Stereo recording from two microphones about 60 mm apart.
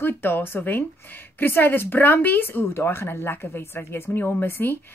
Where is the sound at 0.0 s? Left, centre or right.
Left.